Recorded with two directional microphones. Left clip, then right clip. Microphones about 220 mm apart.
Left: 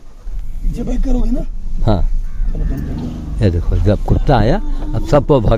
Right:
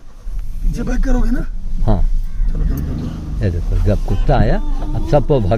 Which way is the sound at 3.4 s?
35° left (ahead or behind).